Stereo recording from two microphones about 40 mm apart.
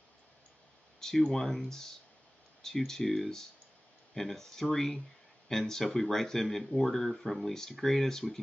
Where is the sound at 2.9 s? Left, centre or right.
Centre.